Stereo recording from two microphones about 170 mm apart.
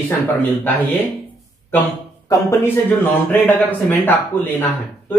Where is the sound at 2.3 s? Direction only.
15° left (ahead or behind).